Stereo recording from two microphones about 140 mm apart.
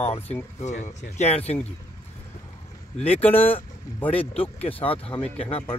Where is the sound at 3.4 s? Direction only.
40° left (ahead or behind).